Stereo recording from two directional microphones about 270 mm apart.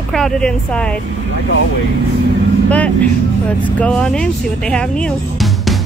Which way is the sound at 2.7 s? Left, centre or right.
Centre.